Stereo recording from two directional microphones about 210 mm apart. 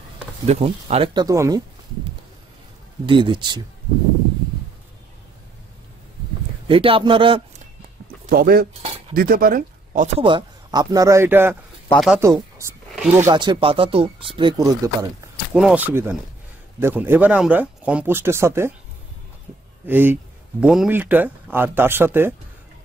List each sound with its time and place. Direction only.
0.5 s speech: 30° right (ahead or behind)
3.1 s speech: 25° right (ahead or behind)
6.7 s speech: 25° right (ahead or behind)
8.3 s speech: 45° right (ahead or behind)
10.1 s speech: 25° right (ahead or behind)
11.9 s speech: centre (ahead or behind)
12.2 s speech: 15° right (ahead or behind)
13.3 s speech: 20° right (ahead or behind)
15.5 s speech: 5° right (ahead or behind)
19.9 s speech: 10° right (ahead or behind)